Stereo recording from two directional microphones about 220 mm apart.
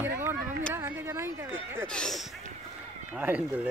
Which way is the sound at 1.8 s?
5° left (ahead or behind).